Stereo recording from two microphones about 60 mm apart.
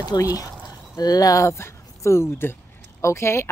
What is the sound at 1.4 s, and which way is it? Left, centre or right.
Speech, left.